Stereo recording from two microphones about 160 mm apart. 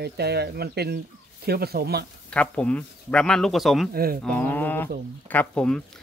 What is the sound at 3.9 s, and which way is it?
Cattle, 70° right (ahead or behind).